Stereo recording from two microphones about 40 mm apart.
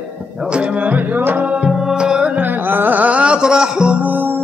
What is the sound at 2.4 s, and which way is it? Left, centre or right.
Music, right.